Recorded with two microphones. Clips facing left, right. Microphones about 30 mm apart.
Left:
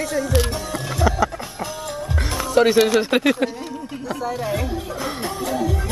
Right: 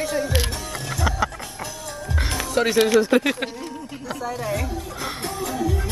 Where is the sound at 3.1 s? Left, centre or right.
Left.